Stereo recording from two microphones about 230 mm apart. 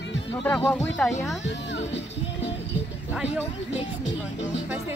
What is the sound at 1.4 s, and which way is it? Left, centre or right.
Music, left.